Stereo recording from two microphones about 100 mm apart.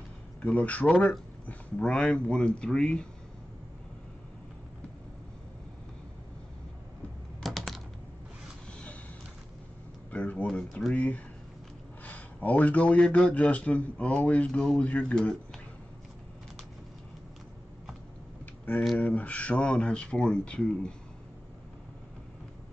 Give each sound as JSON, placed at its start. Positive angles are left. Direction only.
{"t": 0.4, "sound": "speech", "side_deg": 15}
{"t": 7.4, "sound": "typing", "side_deg": 0}
{"t": 10.1, "sound": "speech", "side_deg": 15}
{"t": 18.4, "sound": "a sound", "side_deg": 15}
{"t": 18.9, "sound": "speech", "side_deg": 15}